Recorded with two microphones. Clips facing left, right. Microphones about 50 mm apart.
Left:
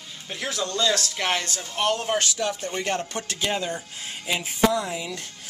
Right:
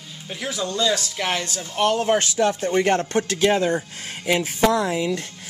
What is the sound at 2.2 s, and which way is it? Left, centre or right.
Speech, right.